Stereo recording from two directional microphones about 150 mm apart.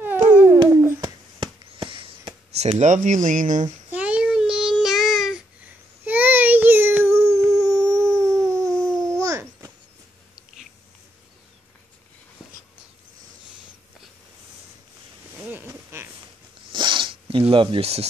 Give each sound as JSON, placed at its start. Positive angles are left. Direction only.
{"t": 0.0, "sound": "babbling", "side_deg": -15}
{"t": 1.0, "sound": "a sound", "side_deg": -30}
{"t": 3.9, "sound": "child singing", "side_deg": -10}
{"t": 6.0, "sound": "child singing", "side_deg": -10}
{"t": 7.8, "sound": "howl", "side_deg": -20}
{"t": 8.5, "sound": "dog", "side_deg": -20}
{"t": 8.7, "sound": "babbling", "side_deg": 5}
{"t": 9.1, "sound": "babbling", "side_deg": -20}
{"t": 15.5, "sound": "a sound", "side_deg": -15}
{"t": 16.7, "sound": "zipper", "side_deg": -30}